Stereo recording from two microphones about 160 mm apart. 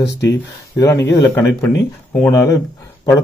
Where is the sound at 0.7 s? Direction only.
20° left (ahead or behind).